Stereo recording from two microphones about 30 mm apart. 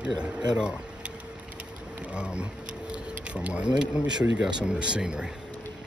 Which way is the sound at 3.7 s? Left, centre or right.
Right.